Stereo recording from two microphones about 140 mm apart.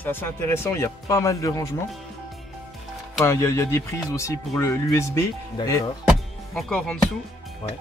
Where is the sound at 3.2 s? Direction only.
20° left (ahead or behind).